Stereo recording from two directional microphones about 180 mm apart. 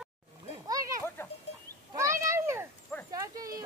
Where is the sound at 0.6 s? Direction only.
20° right (ahead or behind).